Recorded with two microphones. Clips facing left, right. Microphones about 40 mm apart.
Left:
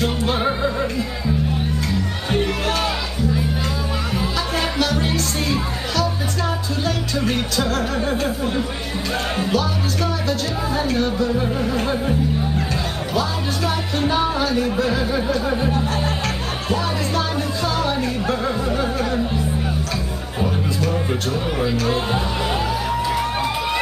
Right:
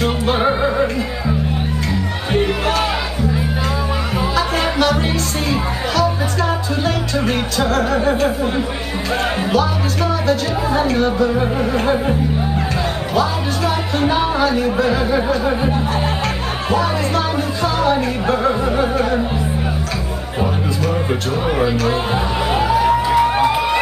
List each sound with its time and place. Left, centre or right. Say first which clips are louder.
0.0 s music: right 4 dB; centre
2.3 s music: right 4 dB; right
4.4 s music: right 6 dB; centre
6.8 s speech: right 3 dB; centre
10.2 s music: right 5 dB; right
13.1 s speech: right 4 dB; centre
17.7 s music: right 5 dB; centre
20.8 s music: right 4 dB; centre